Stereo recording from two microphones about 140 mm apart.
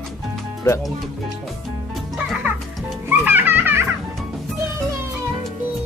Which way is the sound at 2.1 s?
5° right (ahead or behind).